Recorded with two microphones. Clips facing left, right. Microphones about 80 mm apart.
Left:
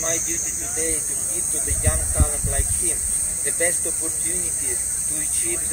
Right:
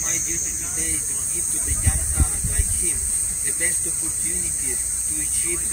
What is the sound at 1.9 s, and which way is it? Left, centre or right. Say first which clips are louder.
Speech: left 4 dB; left.